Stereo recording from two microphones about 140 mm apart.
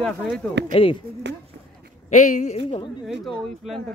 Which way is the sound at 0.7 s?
40° left (ahead or behind).